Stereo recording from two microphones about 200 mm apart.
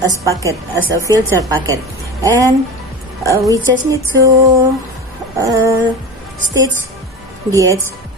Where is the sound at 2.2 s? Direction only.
15° right (ahead or behind).